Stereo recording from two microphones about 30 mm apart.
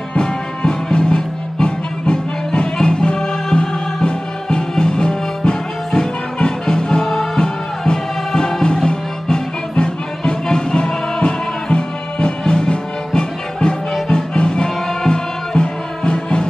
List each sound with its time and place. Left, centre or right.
0.9 s music: left